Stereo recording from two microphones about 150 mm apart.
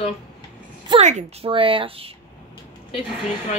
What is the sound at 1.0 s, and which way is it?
Speech, 50° right (ahead or behind).